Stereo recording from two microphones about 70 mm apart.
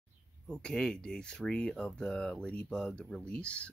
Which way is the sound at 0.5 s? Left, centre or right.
Centre.